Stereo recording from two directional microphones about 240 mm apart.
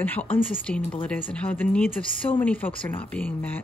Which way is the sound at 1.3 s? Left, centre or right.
Centre.